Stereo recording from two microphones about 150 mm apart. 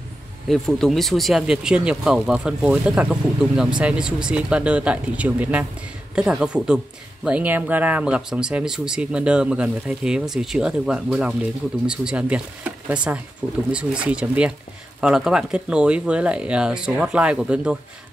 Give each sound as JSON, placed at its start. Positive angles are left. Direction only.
{"t": 0.5, "sound": "speech", "side_deg": 0}